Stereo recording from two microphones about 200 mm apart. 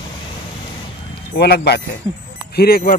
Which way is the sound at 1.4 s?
55° left (ahead or behind).